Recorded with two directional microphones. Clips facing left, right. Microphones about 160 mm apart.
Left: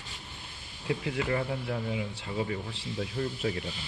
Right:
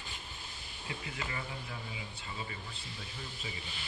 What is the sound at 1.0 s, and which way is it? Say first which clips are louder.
Speech: left 12 dB; 65° left (ahead or behind).